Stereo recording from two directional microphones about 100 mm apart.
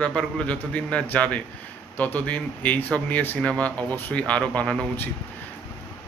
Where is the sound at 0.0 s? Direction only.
10° left (ahead or behind).